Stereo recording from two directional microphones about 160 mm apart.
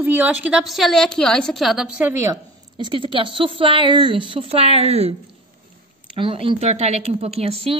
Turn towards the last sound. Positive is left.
turn(degrees=-40)  # may be behind; listen again after turning